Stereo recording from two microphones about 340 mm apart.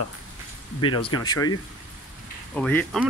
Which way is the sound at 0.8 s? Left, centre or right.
Left.